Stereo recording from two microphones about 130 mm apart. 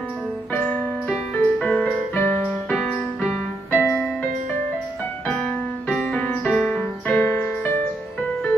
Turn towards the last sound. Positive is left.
turn(degrees=15)  # may be behind; listen again after turning